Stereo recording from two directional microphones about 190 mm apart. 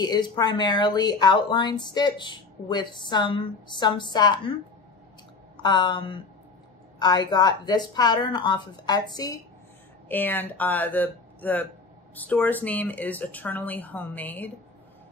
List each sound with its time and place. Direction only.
0.0 s speech: 20° left (ahead or behind)
5.6 s speech: 25° left (ahead or behind)
10.0 s speech: 10° left (ahead or behind)